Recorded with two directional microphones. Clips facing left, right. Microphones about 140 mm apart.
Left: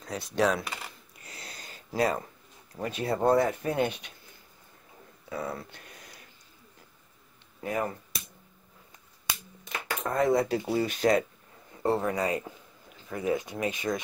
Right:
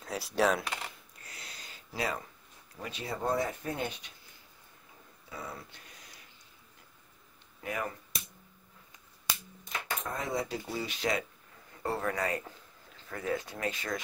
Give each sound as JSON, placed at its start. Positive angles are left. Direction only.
{"t": 0.0, "sound": "speech", "side_deg": -5}
{"t": 1.4, "sound": "a sound", "side_deg": 45}
{"t": 2.8, "sound": "speech", "side_deg": 55}
{"t": 5.3, "sound": "speech", "side_deg": 60}
{"t": 7.6, "sound": "speech", "side_deg": 35}
{"t": 10.0, "sound": "speech", "side_deg": 60}
{"t": 11.8, "sound": "speech", "side_deg": 20}